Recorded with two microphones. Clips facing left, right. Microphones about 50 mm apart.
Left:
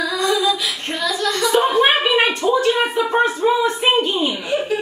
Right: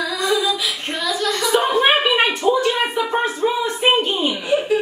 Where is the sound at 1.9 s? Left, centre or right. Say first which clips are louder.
Even; centre.